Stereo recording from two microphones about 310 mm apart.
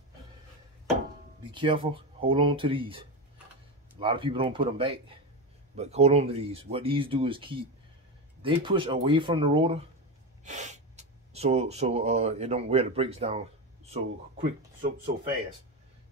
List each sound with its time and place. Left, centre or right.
1.5 s speech: centre